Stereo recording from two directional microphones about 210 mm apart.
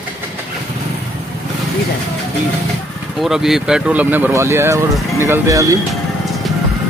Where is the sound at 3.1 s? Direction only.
Centre (ahead or behind).